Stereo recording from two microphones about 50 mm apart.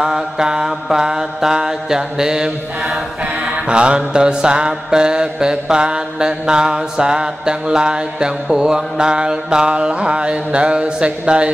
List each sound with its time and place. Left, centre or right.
0.0 s mantra: centre